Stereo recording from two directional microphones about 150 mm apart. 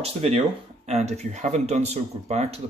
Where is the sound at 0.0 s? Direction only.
40° right (ahead or behind).